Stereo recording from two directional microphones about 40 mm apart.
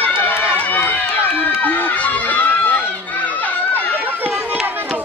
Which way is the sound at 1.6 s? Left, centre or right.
Left.